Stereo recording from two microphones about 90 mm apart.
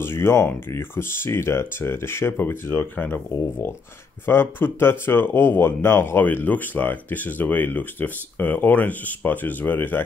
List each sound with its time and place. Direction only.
0.0 s speech: 25° left (ahead or behind)